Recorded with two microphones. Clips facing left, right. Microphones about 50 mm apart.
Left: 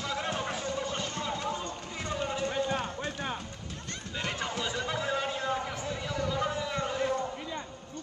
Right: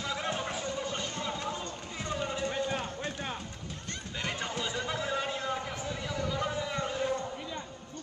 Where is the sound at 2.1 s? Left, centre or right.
Centre.